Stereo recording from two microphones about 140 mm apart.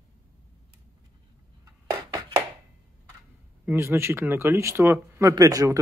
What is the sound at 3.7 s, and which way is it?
Speech, 20° right (ahead or behind).